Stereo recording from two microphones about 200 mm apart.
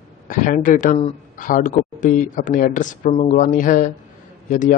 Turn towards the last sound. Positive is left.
turn(degrees=40)  # may be behind; listen again after turning